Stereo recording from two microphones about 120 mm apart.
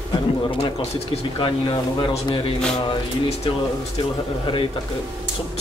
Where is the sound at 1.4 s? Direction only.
45° left (ahead or behind).